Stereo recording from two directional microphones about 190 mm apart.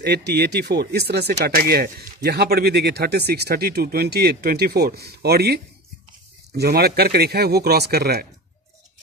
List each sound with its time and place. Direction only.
0.0 s speech: 60° right (ahead or behind)